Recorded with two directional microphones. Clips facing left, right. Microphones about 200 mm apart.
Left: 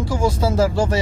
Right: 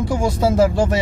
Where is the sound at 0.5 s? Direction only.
20° right (ahead or behind).